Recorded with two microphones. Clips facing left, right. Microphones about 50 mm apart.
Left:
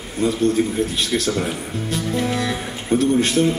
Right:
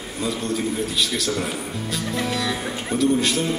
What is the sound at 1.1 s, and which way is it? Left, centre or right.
Speech, left.